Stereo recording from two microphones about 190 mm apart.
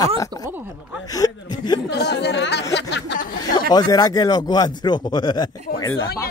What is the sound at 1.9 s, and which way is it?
Speech, 60° left (ahead or behind).